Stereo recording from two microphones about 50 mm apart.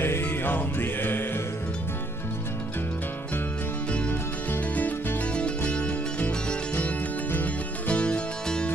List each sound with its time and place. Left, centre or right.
0.0 s music: left
3.9 s music: left
5.3 s music: left
7.9 s music: left